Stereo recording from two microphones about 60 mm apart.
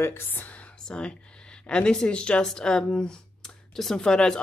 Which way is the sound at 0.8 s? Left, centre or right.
Centre.